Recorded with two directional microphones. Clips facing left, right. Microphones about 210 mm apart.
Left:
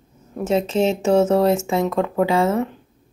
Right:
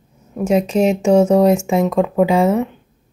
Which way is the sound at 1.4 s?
15° right (ahead or behind).